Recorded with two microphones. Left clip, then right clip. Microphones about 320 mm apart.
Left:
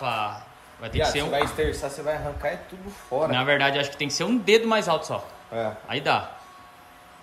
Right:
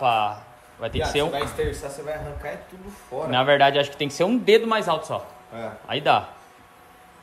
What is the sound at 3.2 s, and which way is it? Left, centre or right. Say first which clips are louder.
Mantra: right 5 dB; centre.